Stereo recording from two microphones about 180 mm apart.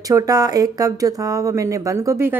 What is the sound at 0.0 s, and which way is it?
Speech, 20° right (ahead or behind).